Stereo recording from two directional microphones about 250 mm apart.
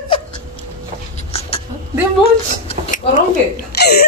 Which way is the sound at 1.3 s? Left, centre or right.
Left.